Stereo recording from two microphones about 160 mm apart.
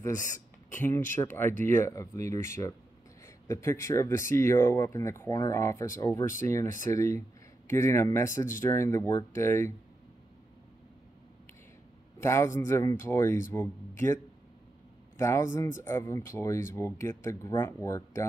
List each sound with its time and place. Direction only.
0.7 s speech: 15° left (ahead or behind)
12.2 s speech: 15° left (ahead or behind)